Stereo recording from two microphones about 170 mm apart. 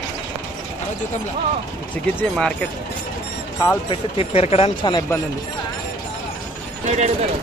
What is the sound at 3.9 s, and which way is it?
Speech, 35° left (ahead or behind).